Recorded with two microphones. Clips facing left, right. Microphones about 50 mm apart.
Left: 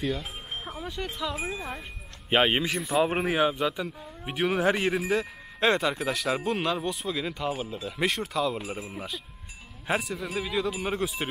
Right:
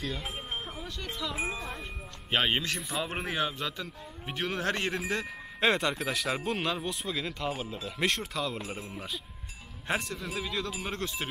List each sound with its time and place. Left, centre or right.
0.1 s music: centre
0.8 s speech: centre
1.3 s speech: centre
2.2 s speech: centre
9.8 s speech: centre